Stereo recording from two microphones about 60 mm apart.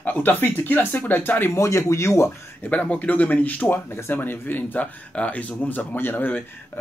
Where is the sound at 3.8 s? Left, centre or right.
Left.